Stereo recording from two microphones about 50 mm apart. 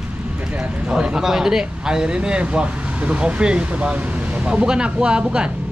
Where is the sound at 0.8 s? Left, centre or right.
Centre.